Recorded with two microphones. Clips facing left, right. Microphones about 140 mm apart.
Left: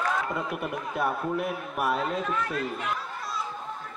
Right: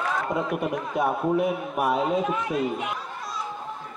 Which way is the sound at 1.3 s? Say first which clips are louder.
Right 6 dB; centre (ahead or behind).